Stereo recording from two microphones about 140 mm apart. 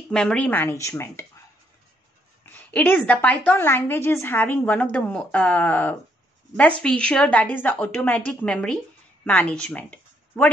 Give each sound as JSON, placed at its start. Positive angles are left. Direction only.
{"t": 0.1, "sound": "a woman's voice", "side_deg": 5}
{"t": 2.4, "sound": "a woman's voice", "side_deg": 15}